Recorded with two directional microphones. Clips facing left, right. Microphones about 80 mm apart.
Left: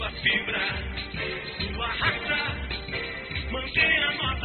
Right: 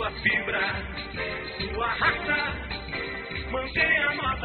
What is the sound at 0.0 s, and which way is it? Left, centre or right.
Music, right.